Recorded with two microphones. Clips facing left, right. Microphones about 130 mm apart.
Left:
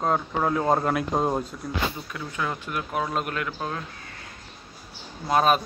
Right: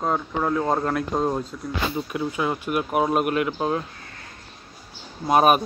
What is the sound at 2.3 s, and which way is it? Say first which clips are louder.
Speech: right 2 dB; 15° right (ahead or behind).